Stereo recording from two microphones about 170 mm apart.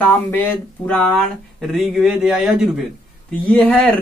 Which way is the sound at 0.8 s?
Centre (ahead or behind).